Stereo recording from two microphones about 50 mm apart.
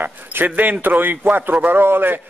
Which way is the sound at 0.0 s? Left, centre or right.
Right.